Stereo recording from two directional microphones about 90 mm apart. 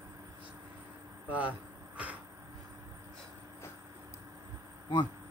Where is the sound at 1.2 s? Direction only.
15° right (ahead or behind).